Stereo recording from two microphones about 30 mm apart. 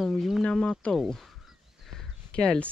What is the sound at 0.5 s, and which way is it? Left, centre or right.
Speech, left.